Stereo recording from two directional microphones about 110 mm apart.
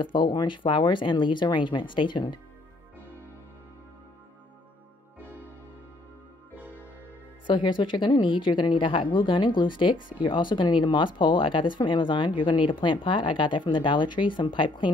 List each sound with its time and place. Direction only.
0.0 s speech: 45° left (ahead or behind)
7.4 s speech: 45° left (ahead or behind)